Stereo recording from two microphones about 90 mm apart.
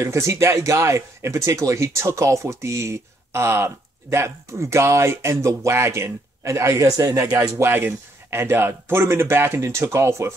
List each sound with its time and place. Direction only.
0.0 s speech: 35° right (ahead or behind)